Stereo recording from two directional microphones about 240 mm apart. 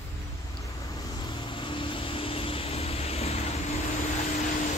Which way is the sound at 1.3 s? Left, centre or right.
Left.